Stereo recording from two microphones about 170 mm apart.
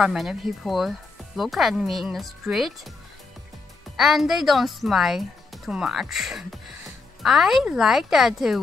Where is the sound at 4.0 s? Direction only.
Centre (ahead or behind).